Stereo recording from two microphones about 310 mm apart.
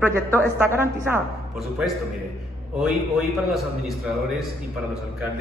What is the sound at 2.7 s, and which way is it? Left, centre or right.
A man's voice, centre.